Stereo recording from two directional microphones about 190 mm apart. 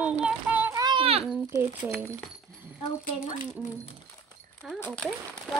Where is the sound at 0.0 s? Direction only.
5° right (ahead or behind); by 1.2 s 30° right (ahead or behind).